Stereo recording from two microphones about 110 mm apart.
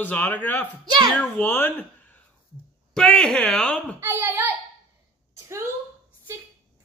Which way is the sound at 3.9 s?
20° right (ahead or behind).